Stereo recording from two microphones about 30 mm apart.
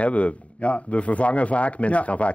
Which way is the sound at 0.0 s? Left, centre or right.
Left.